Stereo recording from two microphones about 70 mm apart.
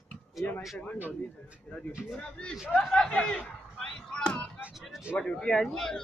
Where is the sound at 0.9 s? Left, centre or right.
Right.